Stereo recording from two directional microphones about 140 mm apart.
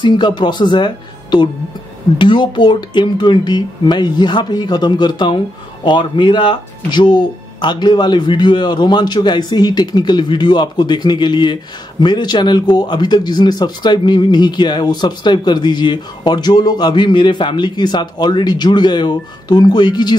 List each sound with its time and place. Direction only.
0.0 s speech: 35° left (ahead or behind)